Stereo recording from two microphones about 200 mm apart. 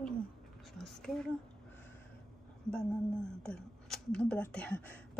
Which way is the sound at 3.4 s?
5° left (ahead or behind).